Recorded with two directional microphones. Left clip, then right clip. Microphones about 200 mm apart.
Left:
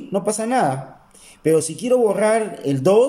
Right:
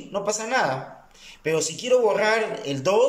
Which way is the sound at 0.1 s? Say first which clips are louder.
Left 4 dB; 35° left (ahead or behind).